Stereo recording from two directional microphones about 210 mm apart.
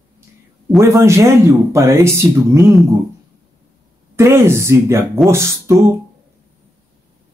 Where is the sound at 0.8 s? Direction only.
15° right (ahead or behind).